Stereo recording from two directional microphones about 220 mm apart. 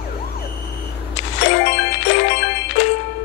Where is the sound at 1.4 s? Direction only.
55° left (ahead or behind).